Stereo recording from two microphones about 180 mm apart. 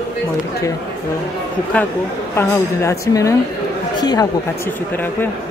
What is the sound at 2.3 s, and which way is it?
A woman's voice, 15° left (ahead or behind).